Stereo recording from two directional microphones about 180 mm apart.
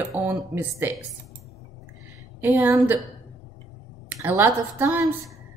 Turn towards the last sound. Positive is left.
turn(degrees=-10)  # may be behind; listen again after turning